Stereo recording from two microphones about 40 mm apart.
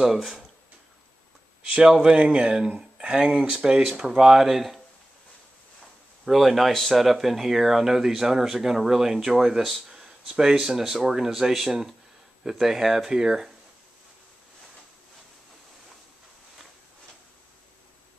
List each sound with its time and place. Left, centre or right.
1.7 s speech: centre
6.2 s speech: centre